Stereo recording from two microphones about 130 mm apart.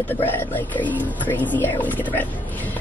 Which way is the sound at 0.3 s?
15° left (ahead or behind).